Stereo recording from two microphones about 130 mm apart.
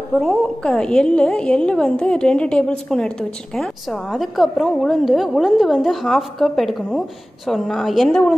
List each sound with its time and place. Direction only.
0.2 s a woman's voice: 5° left (ahead or behind)